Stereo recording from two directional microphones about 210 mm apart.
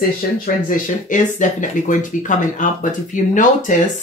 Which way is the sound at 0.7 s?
35° left (ahead or behind).